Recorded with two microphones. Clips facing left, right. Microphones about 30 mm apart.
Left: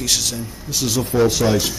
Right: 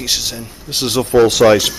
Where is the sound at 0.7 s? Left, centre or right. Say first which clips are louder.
Right 6 dB; right.